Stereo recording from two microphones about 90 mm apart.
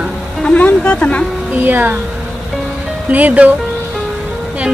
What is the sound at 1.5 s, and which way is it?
Speech, 20° right (ahead or behind).